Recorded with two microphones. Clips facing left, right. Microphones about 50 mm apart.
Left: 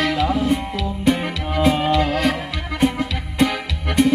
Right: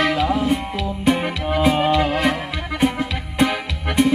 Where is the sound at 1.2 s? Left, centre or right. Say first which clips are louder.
Right 1 dB; centre.